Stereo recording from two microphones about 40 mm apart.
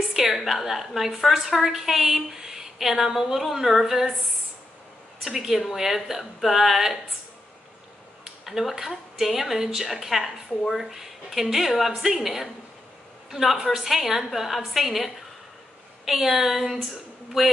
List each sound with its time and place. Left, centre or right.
0.3 s a woman's voice: centre
5.5 s a woman's voice: centre
8.5 s a woman's voice: centre